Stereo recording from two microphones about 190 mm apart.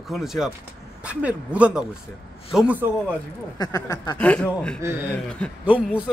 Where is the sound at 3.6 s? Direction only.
20° left (ahead or behind).